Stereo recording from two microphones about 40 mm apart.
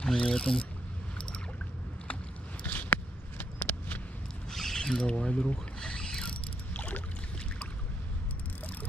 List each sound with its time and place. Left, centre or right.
0.0 s speech: centre
2.6 s a sound: left
4.5 s a sound: centre
5.0 s speech: left
5.8 s mechanisms: centre
6.7 s boat: left